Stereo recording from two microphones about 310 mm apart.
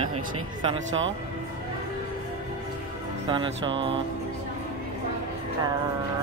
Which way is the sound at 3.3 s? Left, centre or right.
Centre.